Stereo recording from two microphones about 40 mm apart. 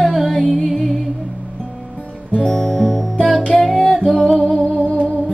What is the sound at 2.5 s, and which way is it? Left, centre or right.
Music, centre.